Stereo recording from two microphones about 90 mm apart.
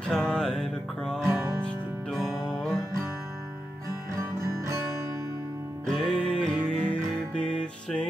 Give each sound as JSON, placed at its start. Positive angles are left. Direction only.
{"t": 0.1, "sound": "music", "side_deg": 10}
{"t": 4.2, "sound": "music", "side_deg": -35}
{"t": 5.9, "sound": "music", "side_deg": 10}